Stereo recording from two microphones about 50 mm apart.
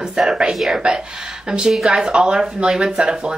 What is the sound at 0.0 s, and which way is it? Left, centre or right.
Speech, centre.